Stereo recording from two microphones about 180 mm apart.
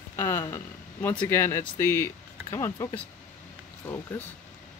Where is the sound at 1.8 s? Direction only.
15° left (ahead or behind).